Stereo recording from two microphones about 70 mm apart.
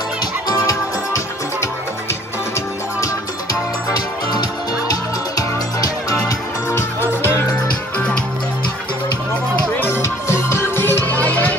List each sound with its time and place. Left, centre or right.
0.2 s music: left
4.3 s music: left
6.7 s music: left
9.7 s music: left